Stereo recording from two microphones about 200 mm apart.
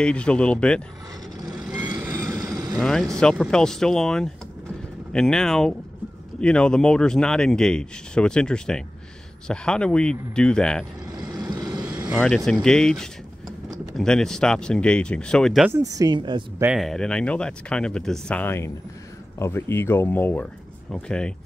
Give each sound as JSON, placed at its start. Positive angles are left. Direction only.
{"t": 0.0, "sound": "speech", "side_deg": 5}
{"t": 1.8, "sound": "a sound", "side_deg": -20}
{"t": 2.3, "sound": "vehicle", "side_deg": -20}
{"t": 2.8, "sound": "speech", "side_deg": 5}
{"t": 11.1, "sound": "vehicle", "side_deg": -20}
{"t": 12.2, "sound": "speech", "side_deg": 5}
{"t": 15.7, "sound": "speech", "side_deg": -15}
{"t": 16.6, "sound": "speech", "side_deg": 0}